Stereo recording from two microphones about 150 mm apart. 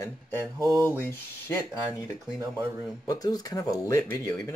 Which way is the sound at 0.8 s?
10° left (ahead or behind).